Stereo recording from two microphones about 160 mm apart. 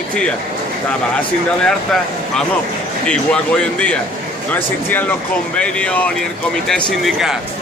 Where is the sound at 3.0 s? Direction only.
5° left (ahead or behind).